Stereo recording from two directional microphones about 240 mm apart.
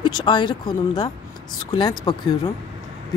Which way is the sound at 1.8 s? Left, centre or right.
Centre.